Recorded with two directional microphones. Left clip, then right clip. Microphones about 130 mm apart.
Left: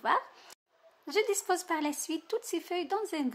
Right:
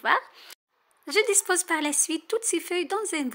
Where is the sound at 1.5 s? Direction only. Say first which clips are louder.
Right 6 dB; 20° right (ahead or behind).